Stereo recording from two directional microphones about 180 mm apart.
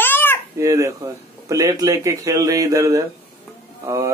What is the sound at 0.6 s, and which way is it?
A man's voice, 15° right (ahead or behind).